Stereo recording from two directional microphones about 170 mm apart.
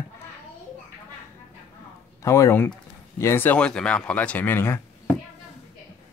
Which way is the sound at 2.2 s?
15° left (ahead or behind).